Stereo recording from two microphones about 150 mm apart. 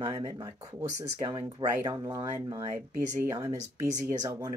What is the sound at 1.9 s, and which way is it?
Speech, 25° right (ahead or behind).